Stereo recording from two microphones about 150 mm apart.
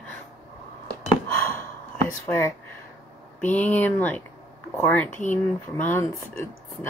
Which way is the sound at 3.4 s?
10° left (ahead or behind).